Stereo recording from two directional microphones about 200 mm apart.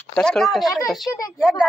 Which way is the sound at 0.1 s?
5° left (ahead or behind).